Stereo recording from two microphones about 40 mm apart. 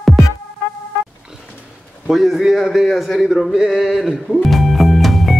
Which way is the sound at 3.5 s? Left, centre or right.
Centre.